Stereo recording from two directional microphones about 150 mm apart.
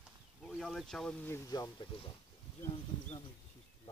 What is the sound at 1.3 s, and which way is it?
Speech, 25° left (ahead or behind).